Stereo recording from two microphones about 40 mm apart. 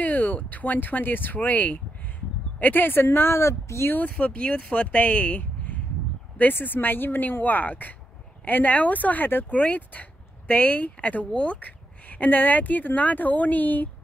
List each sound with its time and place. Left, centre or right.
0.0 s speech: left
4.0 s speech: left
6.6 s speech: left
9.5 s speech: left